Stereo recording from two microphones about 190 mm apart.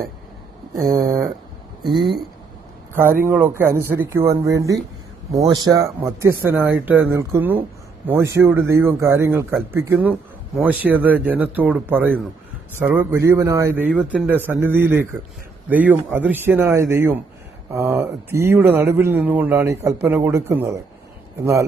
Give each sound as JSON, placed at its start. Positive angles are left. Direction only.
{"t": 0.9, "sound": "speech", "side_deg": -15}
{"t": 2.9, "sound": "speech", "side_deg": -10}